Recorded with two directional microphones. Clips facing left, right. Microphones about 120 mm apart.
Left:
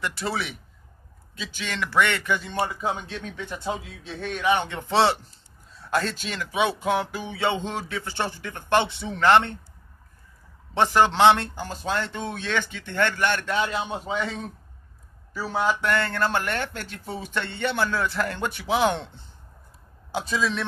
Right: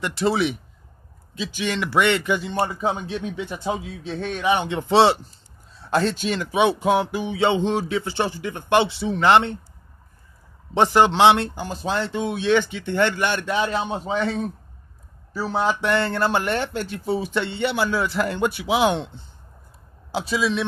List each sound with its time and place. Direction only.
0.0 s speech: 25° right (ahead or behind)
10.7 s speech: 20° right (ahead or behind)
15.4 s speech: 20° right (ahead or behind)
20.2 s speech: 10° right (ahead or behind)